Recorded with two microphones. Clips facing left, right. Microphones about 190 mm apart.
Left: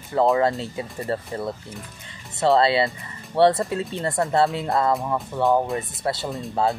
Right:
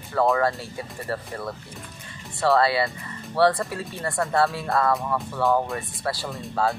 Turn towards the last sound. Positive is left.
turn(degrees=25)  # may be behind; listen again after turning